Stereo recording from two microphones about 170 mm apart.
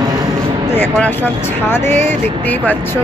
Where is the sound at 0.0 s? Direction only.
20° right (ahead or behind).